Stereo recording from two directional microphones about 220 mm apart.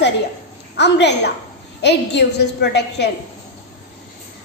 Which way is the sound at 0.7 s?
50° left (ahead or behind).